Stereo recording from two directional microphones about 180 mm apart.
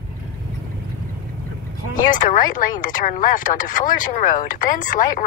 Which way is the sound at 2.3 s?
45° left (ahead or behind).